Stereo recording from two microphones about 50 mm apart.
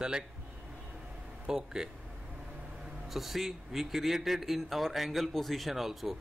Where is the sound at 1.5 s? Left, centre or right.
Centre.